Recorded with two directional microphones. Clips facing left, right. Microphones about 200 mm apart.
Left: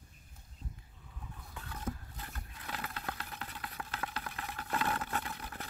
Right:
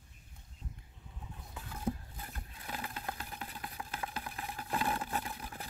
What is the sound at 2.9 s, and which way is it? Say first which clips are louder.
Vehicle: even; 15° right (ahead or behind).